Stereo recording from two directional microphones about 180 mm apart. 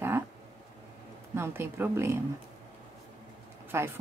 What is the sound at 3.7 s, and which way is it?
Speech, 15° right (ahead or behind).